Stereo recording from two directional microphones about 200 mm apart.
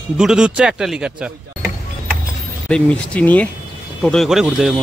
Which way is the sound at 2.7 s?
5° left (ahead or behind).